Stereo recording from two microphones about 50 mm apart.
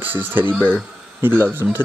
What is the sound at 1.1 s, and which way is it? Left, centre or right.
Speech, right.